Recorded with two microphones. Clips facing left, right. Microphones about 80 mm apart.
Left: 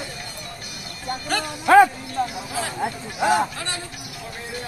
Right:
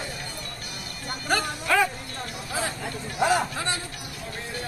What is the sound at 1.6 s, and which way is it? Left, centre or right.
Music, left.